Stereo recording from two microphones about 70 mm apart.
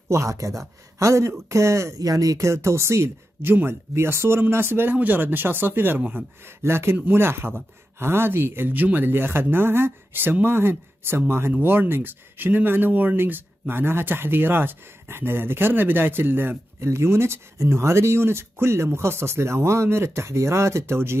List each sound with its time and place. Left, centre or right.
0.1 s speech: right